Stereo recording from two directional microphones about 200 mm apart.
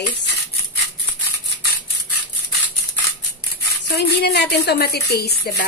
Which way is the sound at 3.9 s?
55° left (ahead or behind).